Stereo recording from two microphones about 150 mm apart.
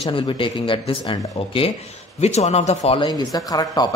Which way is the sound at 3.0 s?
25° left (ahead or behind).